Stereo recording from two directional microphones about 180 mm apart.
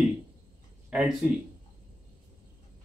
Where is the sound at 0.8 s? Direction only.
5° right (ahead or behind).